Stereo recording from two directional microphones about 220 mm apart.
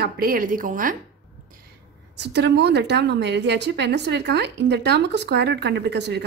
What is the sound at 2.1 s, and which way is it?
A woman's voice, 50° right (ahead or behind).